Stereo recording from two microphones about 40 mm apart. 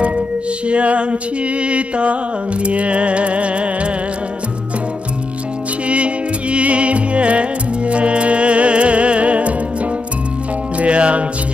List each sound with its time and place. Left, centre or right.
0.7 s music: right
5.9 s music: right
10.8 s music: right